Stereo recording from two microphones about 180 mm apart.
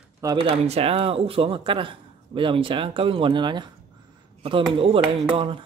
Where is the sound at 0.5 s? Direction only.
35° right (ahead or behind).